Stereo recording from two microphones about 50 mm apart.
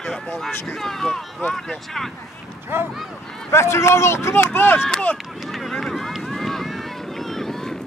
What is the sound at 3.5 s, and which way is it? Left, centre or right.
Speech, left.